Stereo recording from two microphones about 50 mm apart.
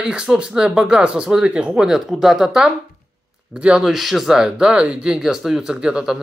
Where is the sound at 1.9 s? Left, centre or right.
Centre.